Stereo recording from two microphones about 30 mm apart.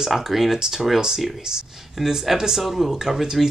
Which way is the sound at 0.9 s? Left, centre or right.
Centre.